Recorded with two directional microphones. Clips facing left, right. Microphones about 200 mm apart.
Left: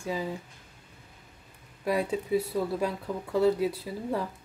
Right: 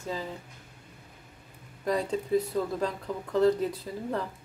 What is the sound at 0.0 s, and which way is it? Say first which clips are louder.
Speech: left 3 dB; 10° left (ahead or behind).